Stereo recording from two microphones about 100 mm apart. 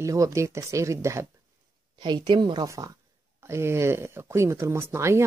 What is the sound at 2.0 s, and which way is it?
Speech, 45° right (ahead or behind).